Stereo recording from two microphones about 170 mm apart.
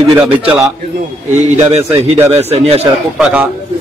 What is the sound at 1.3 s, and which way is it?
Speech, 40° right (ahead or behind).